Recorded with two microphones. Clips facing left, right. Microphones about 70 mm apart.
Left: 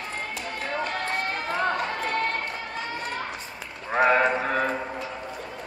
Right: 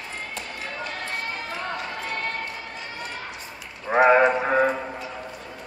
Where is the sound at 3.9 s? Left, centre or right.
Centre.